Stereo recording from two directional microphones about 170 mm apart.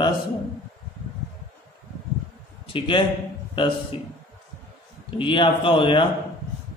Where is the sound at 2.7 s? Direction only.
30° left (ahead or behind).